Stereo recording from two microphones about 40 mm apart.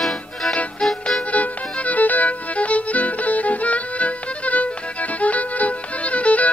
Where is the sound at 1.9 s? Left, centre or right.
Left.